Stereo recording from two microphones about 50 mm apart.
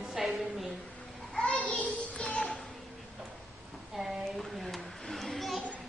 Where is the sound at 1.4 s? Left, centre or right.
Left.